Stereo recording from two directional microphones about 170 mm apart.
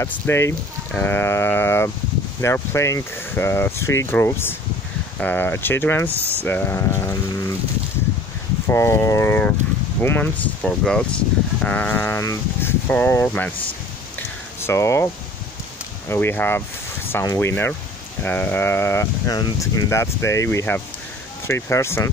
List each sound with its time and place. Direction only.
0.0 s speech: 15° left (ahead or behind)
8.6 s speech: 15° left (ahead or behind)
14.1 s a sound: 15° left (ahead or behind)
16.1 s speech: 15° left (ahead or behind)